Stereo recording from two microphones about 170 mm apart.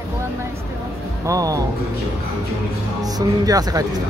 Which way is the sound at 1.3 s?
20° right (ahead or behind).